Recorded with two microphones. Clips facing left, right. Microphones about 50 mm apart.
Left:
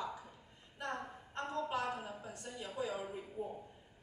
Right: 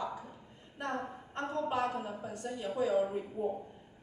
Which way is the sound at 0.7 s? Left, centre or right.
Right.